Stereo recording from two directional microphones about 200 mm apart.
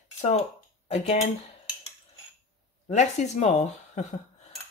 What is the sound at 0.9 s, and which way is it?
Speech, 35° left (ahead or behind).